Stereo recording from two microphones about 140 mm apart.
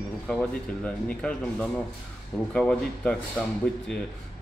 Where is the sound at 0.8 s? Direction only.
10° left (ahead or behind).